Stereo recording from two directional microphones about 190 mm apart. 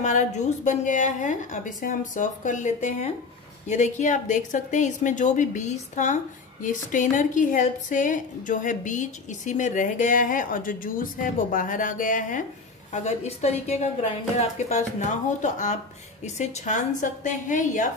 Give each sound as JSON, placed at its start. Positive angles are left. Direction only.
{"t": 0.0, "sound": "a woman's voice", "side_deg": 40}